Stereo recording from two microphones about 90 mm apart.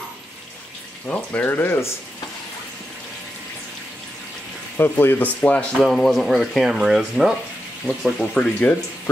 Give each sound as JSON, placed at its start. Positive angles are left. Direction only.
{"t": 1.0, "sound": "speech", "side_deg": 20}
{"t": 4.7, "sound": "speech", "side_deg": 25}
{"t": 5.9, "sound": "speech", "side_deg": 0}